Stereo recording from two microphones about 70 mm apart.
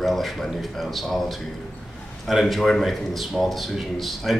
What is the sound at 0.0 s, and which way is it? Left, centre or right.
A man's voice, centre.